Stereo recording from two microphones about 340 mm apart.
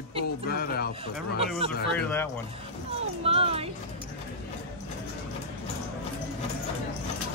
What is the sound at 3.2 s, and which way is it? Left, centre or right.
Speech, centre.